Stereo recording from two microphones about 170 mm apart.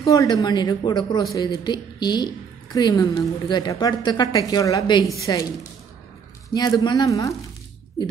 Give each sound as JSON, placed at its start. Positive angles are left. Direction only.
{"t": 0.1, "sound": "a woman's voice", "side_deg": 20}